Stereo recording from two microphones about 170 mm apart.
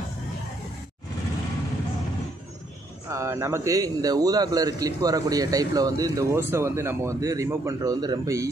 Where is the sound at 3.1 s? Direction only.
15° right (ahead or behind).